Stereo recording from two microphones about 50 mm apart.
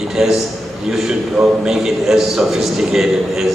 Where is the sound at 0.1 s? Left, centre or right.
Centre.